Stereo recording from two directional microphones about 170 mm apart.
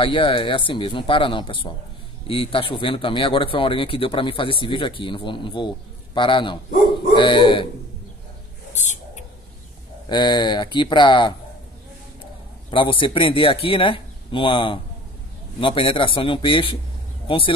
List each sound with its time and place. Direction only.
0.0 s speech: 30° left (ahead or behind)
8.7 s a sound: 45° left (ahead or behind)
10.0 s speech: 25° left (ahead or behind)
12.7 s a man's voice: 30° left (ahead or behind)